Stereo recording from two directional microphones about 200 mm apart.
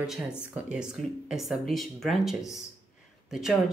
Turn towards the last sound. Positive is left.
turn(degrees=0)  # may be behind; listen again after turning